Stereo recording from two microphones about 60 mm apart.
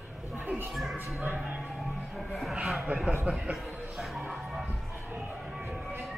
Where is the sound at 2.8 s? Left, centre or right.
Right.